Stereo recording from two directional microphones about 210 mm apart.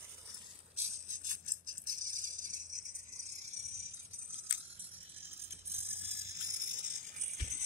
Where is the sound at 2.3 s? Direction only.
35° right (ahead or behind).